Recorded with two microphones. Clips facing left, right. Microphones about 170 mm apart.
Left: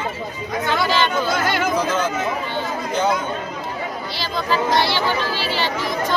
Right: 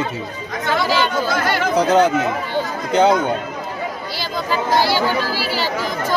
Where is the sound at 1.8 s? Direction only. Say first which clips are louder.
Right 7 dB; 70° right (ahead or behind).